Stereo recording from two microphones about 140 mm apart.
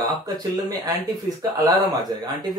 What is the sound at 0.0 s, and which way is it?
Speech, 30° right (ahead or behind).